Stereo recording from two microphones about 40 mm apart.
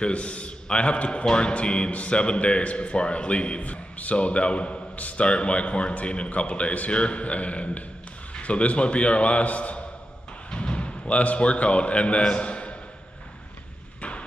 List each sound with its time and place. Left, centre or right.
0.0 s a man's voice: left